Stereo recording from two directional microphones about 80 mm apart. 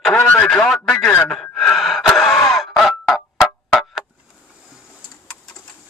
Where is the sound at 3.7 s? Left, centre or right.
Centre.